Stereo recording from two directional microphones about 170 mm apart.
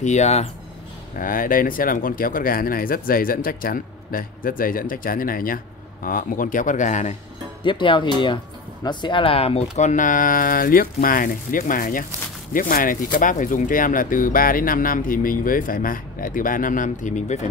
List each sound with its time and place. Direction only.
0.0 s speech: 40° left (ahead or behind)
1.1 s speech: 55° left (ahead or behind)
7.6 s speech: 30° left (ahead or behind); by 17.5 s 45° left (ahead or behind)